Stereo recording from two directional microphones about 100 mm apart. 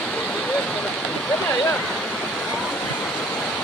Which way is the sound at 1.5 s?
20° left (ahead or behind).